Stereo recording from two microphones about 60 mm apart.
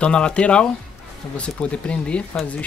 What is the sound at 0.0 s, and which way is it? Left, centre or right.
Speech, centre.